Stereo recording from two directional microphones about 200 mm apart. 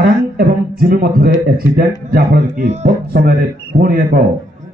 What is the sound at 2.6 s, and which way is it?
Speech, 35° right (ahead or behind).